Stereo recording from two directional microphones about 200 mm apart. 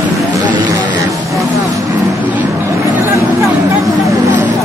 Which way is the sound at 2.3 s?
10° right (ahead or behind).